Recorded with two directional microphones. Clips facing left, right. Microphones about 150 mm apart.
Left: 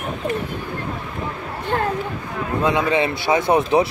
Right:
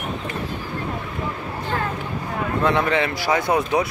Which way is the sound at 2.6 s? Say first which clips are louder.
Left 2 dB; 15° left (ahead or behind).